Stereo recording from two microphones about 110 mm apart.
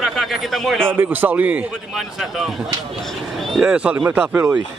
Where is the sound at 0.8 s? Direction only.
20° right (ahead or behind).